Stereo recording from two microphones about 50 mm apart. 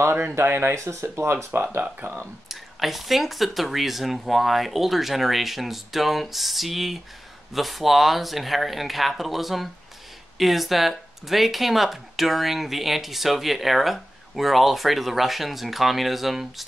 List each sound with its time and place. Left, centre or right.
0.0 s speech: right
0.7 s speech: right
1.1 s speech: right
2.5 s speech: centre